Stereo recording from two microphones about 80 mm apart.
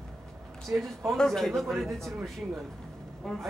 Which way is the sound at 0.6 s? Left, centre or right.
Centre.